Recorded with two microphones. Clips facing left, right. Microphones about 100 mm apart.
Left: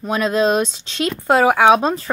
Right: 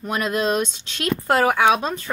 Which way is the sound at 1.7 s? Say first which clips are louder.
Left 7 dB; 35° left (ahead or behind).